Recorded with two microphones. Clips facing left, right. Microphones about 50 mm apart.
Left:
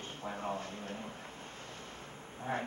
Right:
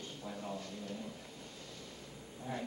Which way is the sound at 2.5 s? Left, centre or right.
Left.